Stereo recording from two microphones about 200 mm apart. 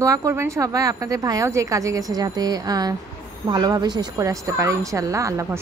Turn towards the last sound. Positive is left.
turn(degrees=-15)  # may be behind; listen again after turning